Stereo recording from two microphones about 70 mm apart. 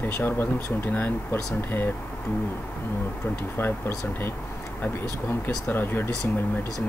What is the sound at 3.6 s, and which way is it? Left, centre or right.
Speech, left.